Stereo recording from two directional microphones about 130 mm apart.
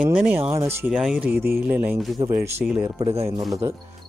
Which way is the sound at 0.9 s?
5° right (ahead or behind).